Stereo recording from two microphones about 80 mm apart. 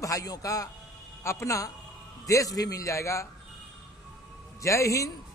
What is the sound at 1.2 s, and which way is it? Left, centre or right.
A man's voice, left.